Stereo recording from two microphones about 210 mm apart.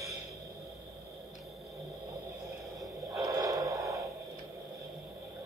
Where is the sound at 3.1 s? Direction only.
15° right (ahead or behind).